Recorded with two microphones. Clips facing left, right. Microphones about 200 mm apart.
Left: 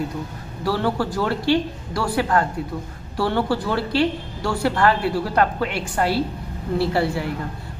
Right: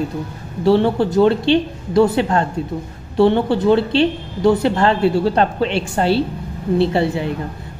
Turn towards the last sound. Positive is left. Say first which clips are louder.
# right 4 dB
turn(degrees=-20)  # may be behind; listen again after turning